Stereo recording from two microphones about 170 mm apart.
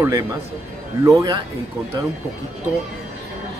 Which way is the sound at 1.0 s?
20° right (ahead or behind).